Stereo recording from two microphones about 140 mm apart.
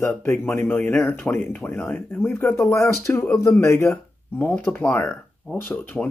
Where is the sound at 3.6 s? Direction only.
20° left (ahead or behind).